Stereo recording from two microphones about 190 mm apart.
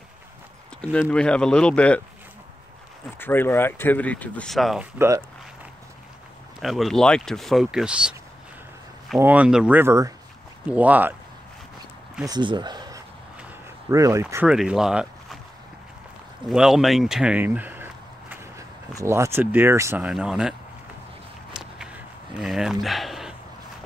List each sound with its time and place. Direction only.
0.9 s speech: 5° left (ahead or behind)
3.2 s speech: 10° left (ahead or behind)
4.9 s speech: 15° right (ahead or behind)
6.6 s speech: centre (ahead or behind)
9.2 s speech: 5° right (ahead or behind)
12.3 s speech: 25° right (ahead or behind)
13.4 s a sound: 15° right (ahead or behind)
14.2 s speech: 5° right (ahead or behind)
16.4 s speech: centre (ahead or behind)
20.1 s speech: 5° right (ahead or behind)
21.5 s a sound: centre (ahead or behind)